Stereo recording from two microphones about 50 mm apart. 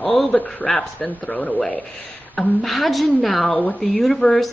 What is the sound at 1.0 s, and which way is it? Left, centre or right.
Speech, left.